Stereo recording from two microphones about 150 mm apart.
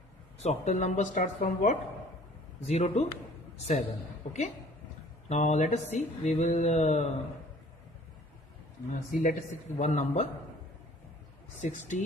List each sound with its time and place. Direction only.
0.4 s speech: 50° left (ahead or behind)
2.6 s a man's voice: 45° left (ahead or behind)
5.3 s speech: 50° left (ahead or behind)
9.1 s speech: 60° left (ahead or behind)
11.6 s speech: 55° left (ahead or behind)